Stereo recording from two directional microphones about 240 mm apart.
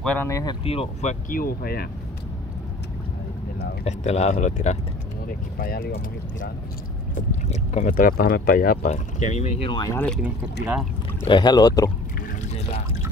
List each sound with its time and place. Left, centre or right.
0.0 s speech: centre
0.7 s speech: left
1.3 s speech: left
3.8 s speech: left
7.2 s speech: left
9.7 s speech: centre
10.2 s speech: centre
11.2 s speech: centre
12.2 s boat: left